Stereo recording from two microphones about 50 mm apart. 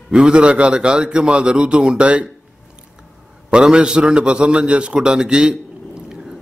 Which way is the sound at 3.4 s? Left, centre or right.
Centre.